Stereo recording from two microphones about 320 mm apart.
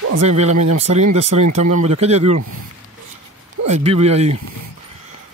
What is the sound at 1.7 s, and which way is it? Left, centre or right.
Speech, centre.